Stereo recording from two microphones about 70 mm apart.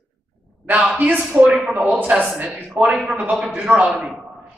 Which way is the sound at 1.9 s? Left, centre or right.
Right.